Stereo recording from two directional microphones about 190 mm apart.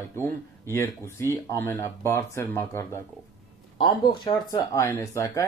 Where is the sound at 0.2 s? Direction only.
15° left (ahead or behind).